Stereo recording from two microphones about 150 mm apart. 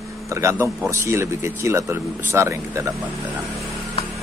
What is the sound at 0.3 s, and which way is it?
A man's voice, 20° right (ahead or behind).